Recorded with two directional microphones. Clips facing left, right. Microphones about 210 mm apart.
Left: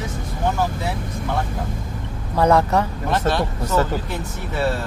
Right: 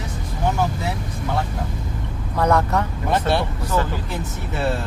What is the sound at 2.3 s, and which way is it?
Speech, 30° left (ahead or behind).